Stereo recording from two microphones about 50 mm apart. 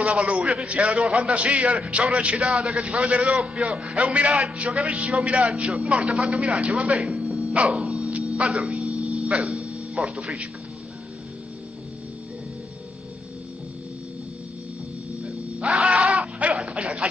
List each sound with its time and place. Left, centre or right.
0.0 s a man's voice: centre
1.0 s a man's voice: centre
2.4 s speech: centre
3.6 s a man's voice: centre
6.9 s music: centre
7.7 s dog: centre
8.3 s music: centre
15.7 s a sound: centre
16.1 s a sound: right